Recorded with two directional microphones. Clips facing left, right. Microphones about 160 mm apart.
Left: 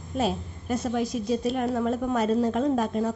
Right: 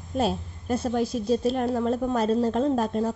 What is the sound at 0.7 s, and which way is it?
A woman's voice, 30° right (ahead or behind).